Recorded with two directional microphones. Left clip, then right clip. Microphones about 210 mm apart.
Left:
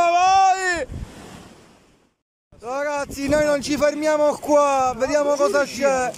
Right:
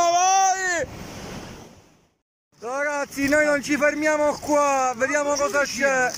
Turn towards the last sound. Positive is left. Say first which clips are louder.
# left 1 dB
turn(degrees=10)  # may be behind; listen again after turning